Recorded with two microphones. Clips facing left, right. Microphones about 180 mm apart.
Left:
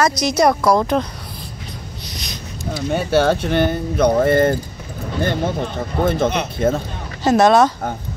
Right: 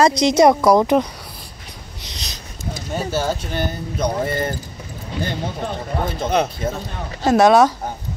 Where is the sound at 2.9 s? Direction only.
65° left (ahead or behind).